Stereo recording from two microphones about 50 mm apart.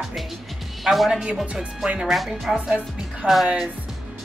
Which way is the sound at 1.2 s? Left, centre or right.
Right.